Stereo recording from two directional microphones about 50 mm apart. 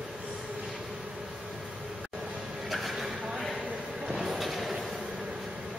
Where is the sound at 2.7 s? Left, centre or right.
Centre.